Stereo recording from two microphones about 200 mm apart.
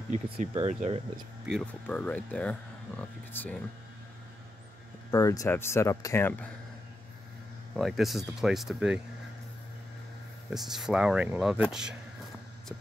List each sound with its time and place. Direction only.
0.1 s speech: 35° right (ahead or behind)
1.5 s speech: 5° left (ahead or behind)
5.1 s speech: 15° left (ahead or behind)
7.7 s speech: centre (ahead or behind)
10.5 s speech: centre (ahead or behind)